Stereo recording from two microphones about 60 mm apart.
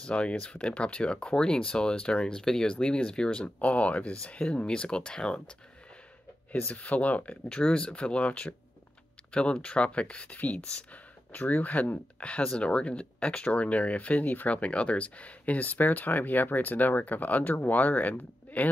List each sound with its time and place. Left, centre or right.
0.0 s speech: centre
6.5 s speech: left